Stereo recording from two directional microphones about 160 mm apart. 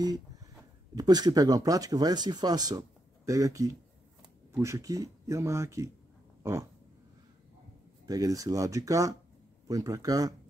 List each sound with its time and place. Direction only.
0.0 s a sound: 25° right (ahead or behind)
0.9 s speech: 25° right (ahead or behind)
6.4 s dog: 15° right (ahead or behind)
8.1 s speech: 20° right (ahead or behind)